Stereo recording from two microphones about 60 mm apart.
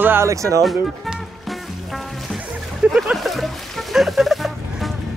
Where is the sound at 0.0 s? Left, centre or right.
Right.